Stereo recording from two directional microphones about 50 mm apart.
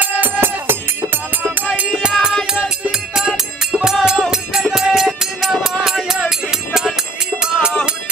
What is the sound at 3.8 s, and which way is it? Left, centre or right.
Music, centre.